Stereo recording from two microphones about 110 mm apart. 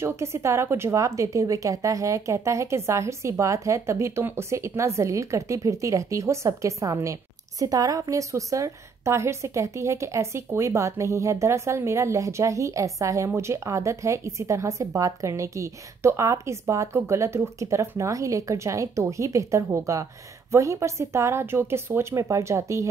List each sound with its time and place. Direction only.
0.0 s a woman's voice: 25° right (ahead or behind)